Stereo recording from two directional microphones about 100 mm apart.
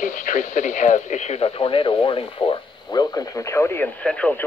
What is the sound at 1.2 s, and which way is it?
Speech, 85° left.